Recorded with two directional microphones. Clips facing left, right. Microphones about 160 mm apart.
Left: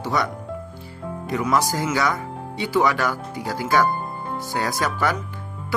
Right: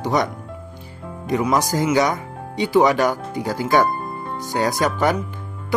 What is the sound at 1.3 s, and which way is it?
Speech, 20° right (ahead or behind).